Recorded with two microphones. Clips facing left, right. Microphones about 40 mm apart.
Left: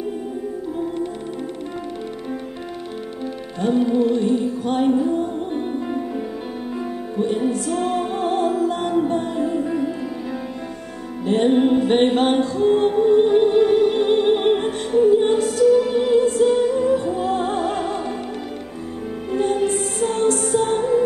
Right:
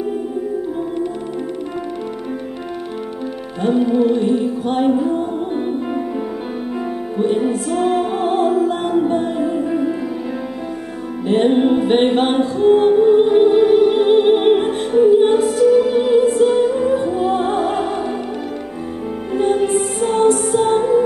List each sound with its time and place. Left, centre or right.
3.6 s music: centre
11.2 s music: centre
19.3 s music: centre